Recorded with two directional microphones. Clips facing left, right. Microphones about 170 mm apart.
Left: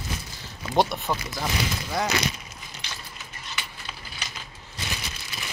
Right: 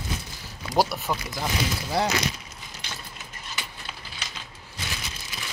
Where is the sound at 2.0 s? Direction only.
30° right (ahead or behind).